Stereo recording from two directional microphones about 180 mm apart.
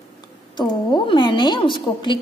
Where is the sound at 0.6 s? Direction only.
25° left (ahead or behind).